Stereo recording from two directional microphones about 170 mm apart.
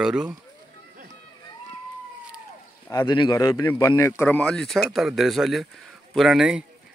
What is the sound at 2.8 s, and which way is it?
A man's voice, 25° left (ahead or behind).